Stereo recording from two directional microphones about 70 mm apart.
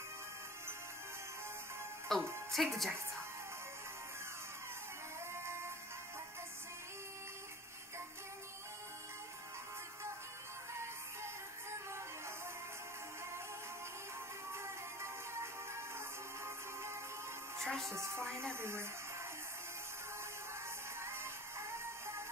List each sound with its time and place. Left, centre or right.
2.1 s speech: centre
5.4 s music: right
14.5 s music: right
17.6 s music: centre
17.9 s music: right
18.5 s speech: right
21.0 s music: right